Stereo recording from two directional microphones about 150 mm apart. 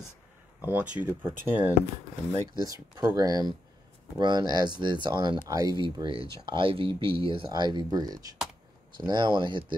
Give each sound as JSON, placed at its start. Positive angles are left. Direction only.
{"t": 0.6, "sound": "speech", "side_deg": -10}